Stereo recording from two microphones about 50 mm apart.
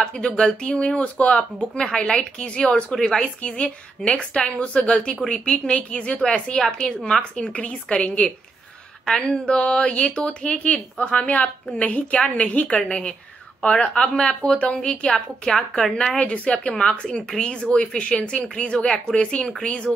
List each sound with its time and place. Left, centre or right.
0.0 s speech: centre
1.8 s speech: centre
7.3 s speech: left
9.0 s a woman's voice: centre
9.5 s a woman's voice: left
16.2 s speech: left